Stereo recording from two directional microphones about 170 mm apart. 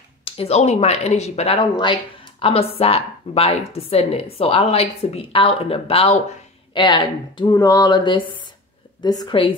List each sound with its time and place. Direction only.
0.2 s a woman's voice: 35° left (ahead or behind)